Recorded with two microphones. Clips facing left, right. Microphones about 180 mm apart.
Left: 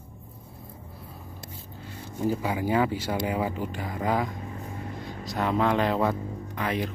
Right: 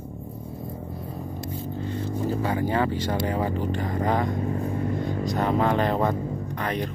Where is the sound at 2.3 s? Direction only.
10° left (ahead or behind).